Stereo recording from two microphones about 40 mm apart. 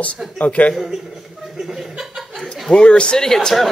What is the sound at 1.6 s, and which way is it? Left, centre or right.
Chuckle, centre.